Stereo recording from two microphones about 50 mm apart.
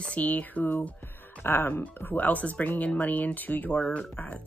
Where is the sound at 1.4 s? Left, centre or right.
Left.